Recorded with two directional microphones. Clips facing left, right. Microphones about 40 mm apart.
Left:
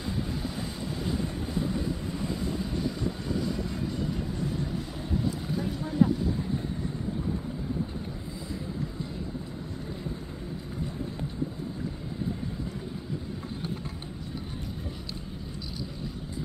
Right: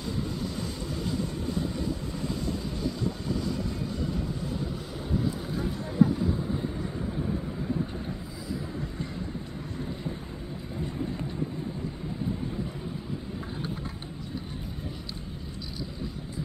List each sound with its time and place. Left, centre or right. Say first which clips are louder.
6.0 s vehicle: right 1 dB; centre